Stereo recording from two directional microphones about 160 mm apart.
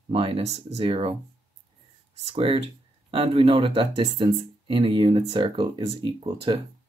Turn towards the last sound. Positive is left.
turn(degrees=-30)  # may be behind; listen again after turning